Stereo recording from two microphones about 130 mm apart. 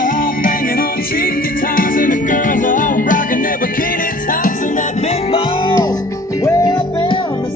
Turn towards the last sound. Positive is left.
turn(degrees=35)  # may be behind; listen again after turning